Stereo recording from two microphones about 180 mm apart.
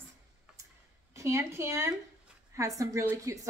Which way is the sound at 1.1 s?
15° right (ahead or behind).